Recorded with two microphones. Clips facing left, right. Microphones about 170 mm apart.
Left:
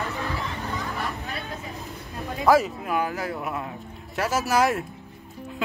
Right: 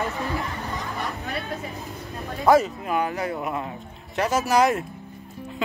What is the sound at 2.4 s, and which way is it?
A woman's voice, centre (ahead or behind).